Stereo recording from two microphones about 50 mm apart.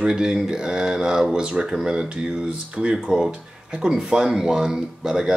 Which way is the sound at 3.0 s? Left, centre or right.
Centre.